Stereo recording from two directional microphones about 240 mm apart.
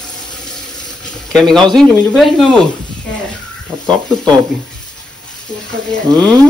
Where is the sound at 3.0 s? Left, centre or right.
Centre.